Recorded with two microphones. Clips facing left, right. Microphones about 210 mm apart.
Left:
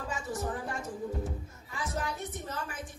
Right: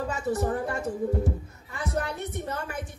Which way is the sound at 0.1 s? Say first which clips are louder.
Right 6 dB; 65° right (ahead or behind).